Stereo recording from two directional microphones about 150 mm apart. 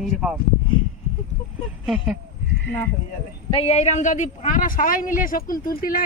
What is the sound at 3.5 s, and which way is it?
A man's voice, 45° left (ahead or behind).